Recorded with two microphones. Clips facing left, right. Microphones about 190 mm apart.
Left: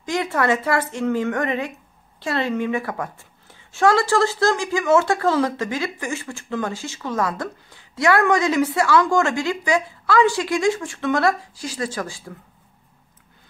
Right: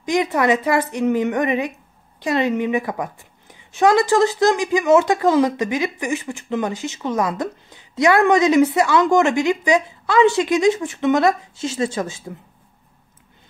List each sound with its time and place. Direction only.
0.0 s a woman's voice: 15° right (ahead or behind)